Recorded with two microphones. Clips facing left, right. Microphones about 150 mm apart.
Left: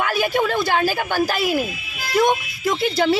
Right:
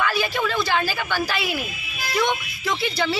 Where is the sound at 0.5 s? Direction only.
50° left (ahead or behind).